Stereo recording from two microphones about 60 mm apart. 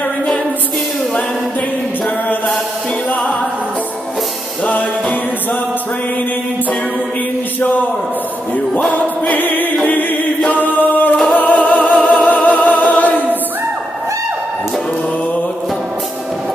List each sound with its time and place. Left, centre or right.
8.7 s music: left
9.8 s a capella: left
11.2 s music: left